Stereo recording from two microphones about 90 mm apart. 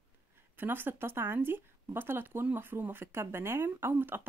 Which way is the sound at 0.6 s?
25° right (ahead or behind).